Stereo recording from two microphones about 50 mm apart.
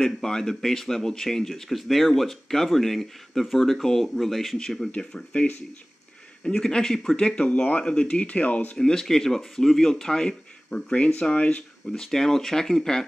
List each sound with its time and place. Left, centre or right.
0.0 s a man's voice: centre
5.1 s a man's voice: left
8.7 s a man's voice: centre
11.9 s a man's voice: centre